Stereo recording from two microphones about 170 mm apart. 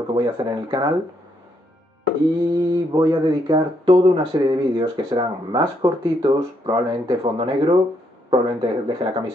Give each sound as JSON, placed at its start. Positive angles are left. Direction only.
{"t": 0.1, "sound": "speech", "side_deg": -25}
{"t": 2.5, "sound": "speech", "side_deg": -25}